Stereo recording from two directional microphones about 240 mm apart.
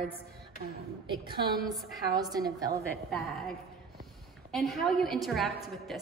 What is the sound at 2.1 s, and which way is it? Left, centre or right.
Speech, centre.